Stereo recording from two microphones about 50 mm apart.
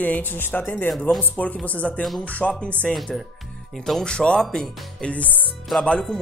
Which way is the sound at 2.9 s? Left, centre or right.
Centre.